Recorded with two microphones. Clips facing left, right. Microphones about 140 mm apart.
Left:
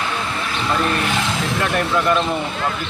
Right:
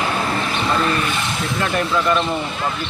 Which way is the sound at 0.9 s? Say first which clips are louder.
Left 1 dB; 85° left.